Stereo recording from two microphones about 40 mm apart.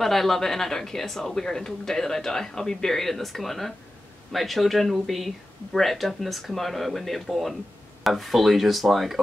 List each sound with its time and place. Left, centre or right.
0.0 s speech: centre